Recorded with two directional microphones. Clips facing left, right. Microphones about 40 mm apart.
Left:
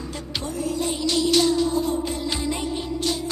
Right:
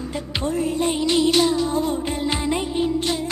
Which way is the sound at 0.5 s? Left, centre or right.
Right.